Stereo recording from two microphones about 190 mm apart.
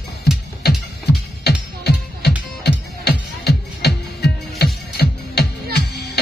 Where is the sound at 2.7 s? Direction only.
60° left (ahead or behind).